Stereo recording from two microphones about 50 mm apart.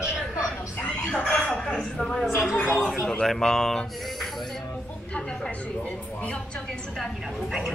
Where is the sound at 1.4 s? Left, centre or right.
Left.